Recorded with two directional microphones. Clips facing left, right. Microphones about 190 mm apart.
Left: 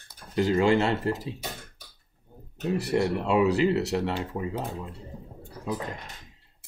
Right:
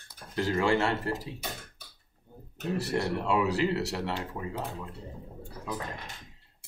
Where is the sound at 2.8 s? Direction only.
15° left (ahead or behind).